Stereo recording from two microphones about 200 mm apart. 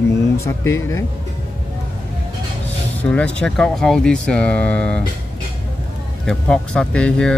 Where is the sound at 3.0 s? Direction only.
5° left (ahead or behind).